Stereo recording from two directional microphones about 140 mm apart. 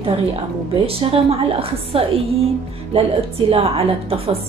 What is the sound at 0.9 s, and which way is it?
A woman's voice, 40° right (ahead or behind).